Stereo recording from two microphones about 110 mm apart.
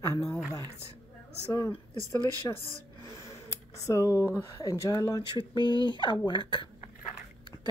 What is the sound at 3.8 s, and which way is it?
Speech, 25° left (ahead or behind).